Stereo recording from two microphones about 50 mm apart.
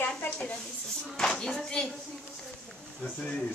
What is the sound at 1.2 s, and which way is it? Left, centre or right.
Speech, centre.